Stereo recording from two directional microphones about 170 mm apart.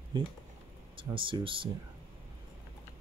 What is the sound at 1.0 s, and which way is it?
Speech, 30° right (ahead or behind).